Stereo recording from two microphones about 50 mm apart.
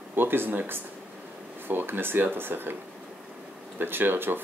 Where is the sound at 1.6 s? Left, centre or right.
Right.